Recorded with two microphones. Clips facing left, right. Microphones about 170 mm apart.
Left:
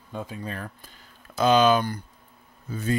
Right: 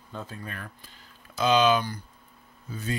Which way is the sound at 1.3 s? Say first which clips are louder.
Left 3 dB; 50° left (ahead or behind).